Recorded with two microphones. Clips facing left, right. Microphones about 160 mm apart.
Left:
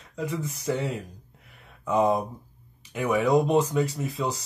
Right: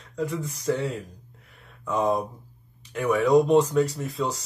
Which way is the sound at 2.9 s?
20° left (ahead or behind).